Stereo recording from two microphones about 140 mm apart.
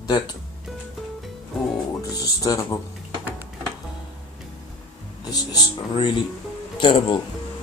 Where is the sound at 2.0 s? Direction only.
25° left (ahead or behind).